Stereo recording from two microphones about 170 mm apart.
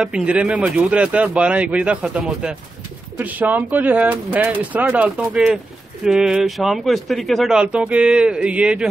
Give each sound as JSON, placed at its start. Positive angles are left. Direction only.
{"t": 0.0, "sound": "speech", "side_deg": -5}